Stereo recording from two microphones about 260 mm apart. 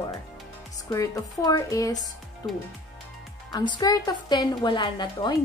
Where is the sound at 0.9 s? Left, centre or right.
Centre.